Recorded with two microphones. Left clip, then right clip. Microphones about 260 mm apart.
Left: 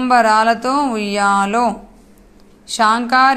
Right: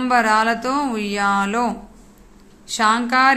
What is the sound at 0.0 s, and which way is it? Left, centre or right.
A woman's voice, centre.